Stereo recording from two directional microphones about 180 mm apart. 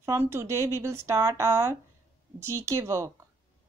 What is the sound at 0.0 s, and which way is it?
A woman's voice, 15° right (ahead or behind).